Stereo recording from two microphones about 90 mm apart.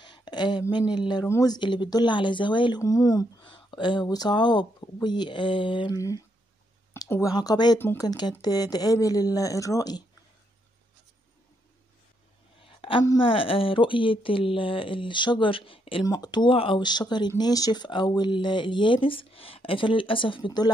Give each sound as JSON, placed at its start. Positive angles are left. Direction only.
{"t": 0.0, "sound": "speech", "side_deg": 55}
{"t": 2.8, "sound": "speech", "side_deg": 40}
{"t": 3.4, "sound": "speech", "side_deg": 65}
{"t": 5.9, "sound": "speech", "side_deg": 40}
{"t": 7.3, "sound": "speech", "side_deg": 50}
{"t": 12.8, "sound": "a sound", "side_deg": 90}
{"t": 13.2, "sound": "speech", "side_deg": 80}
{"t": 16.1, "sound": "speech", "side_deg": 50}
{"t": 16.4, "sound": "speech", "side_deg": 80}
{"t": 16.8, "sound": "speech", "side_deg": 55}